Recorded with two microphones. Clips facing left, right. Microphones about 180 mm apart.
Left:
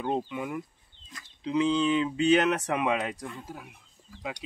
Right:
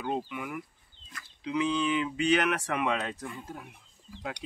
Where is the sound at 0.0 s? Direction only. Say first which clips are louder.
Left 3 dB; 25° left (ahead or behind).